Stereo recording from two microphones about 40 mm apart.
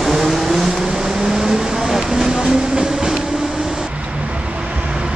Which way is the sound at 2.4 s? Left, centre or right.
Right.